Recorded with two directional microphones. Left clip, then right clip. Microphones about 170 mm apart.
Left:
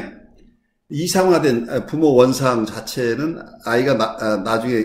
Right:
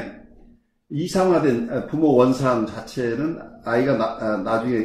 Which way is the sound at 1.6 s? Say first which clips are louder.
Left 3 dB; 15° left (ahead or behind).